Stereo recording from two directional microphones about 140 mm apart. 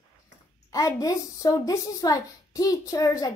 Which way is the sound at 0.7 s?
25° left (ahead or behind).